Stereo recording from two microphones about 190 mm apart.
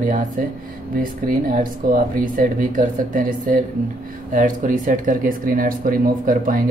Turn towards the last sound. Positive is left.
turn(degrees=-45)  # may be behind; listen again after turning